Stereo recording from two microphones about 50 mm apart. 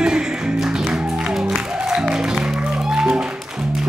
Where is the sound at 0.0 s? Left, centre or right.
Centre.